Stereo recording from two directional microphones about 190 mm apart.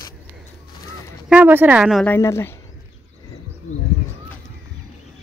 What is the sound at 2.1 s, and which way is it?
Speech, 15° left (ahead or behind).